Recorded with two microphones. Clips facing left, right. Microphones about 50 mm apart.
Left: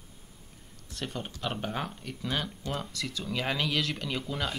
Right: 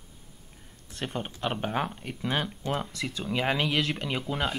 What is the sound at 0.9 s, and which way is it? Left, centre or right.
Speech, right.